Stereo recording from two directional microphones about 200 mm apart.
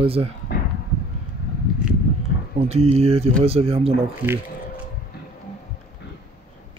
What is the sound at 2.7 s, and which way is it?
Speech, 30° right (ahead or behind).